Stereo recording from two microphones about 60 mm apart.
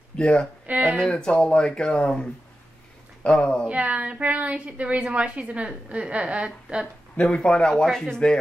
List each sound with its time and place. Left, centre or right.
0.2 s speech: centre
0.7 s speech: right
0.9 s speech: centre
3.3 s speech: centre
3.6 s a woman's voice: right
7.2 s speech: centre
7.7 s speech: centre